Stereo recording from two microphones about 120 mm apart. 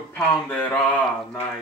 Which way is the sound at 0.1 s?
10° left (ahead or behind).